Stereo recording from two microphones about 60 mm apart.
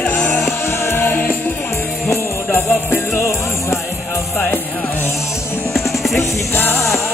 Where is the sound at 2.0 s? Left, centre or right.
Left.